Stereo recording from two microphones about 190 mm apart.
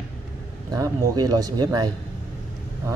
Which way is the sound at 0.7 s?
20° right (ahead or behind).